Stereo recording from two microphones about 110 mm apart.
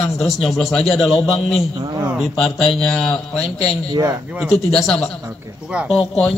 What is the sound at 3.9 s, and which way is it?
Speech, 35° right (ahead or behind).